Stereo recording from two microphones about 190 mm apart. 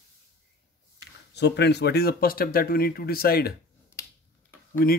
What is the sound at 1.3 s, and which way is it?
Speech, 60° left (ahead or behind).